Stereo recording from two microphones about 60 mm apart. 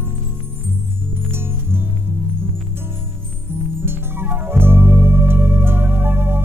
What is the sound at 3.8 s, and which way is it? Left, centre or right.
Music, right.